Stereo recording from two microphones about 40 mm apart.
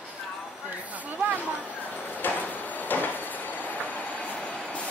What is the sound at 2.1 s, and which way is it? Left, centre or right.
Train, left.